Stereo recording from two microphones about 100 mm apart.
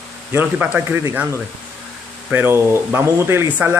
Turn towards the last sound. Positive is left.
turn(degrees=-25)  # may be behind; listen again after turning